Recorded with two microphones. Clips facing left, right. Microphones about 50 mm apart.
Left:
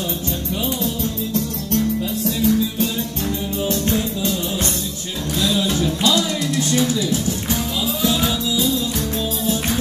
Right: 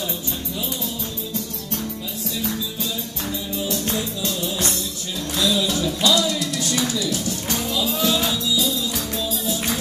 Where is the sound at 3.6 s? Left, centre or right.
Left.